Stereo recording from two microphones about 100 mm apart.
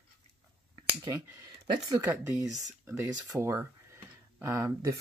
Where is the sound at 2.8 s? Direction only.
25° right (ahead or behind).